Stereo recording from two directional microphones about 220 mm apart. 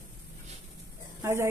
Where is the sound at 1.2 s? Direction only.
10° right (ahead or behind).